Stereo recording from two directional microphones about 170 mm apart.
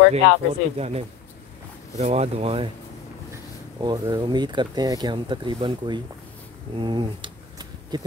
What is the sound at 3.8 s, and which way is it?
Speech, 25° right (ahead or behind).